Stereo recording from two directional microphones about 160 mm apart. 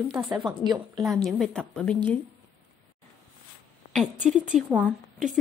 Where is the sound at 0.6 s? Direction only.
25° right (ahead or behind).